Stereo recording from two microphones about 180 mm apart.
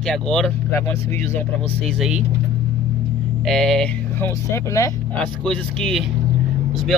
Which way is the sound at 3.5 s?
Centre (ahead or behind).